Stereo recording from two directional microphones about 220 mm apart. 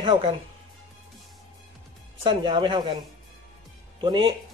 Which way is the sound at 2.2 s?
20° right (ahead or behind).